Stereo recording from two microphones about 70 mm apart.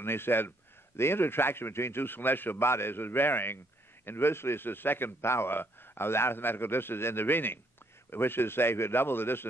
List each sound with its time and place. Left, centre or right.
0.0 s a man's voice: left